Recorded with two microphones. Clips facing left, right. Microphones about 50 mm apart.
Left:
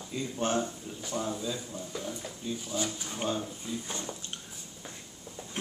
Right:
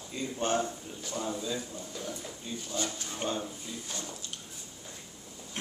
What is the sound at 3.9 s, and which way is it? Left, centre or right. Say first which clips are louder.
Speech: left 2 dB; left.